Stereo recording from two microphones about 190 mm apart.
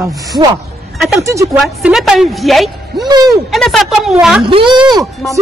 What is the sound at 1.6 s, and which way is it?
A woman's voice, centre (ahead or behind).